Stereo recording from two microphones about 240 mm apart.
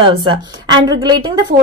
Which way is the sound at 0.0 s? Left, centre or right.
Right.